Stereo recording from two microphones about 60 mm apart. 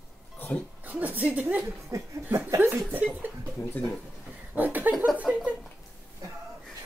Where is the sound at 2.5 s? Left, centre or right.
Right.